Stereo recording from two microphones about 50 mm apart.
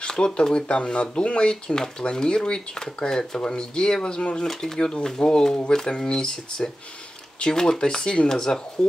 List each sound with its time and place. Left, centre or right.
0.0 s speech: centre
4.5 s speech: centre